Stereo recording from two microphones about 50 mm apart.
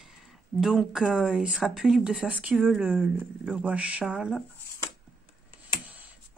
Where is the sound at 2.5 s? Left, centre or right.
Centre.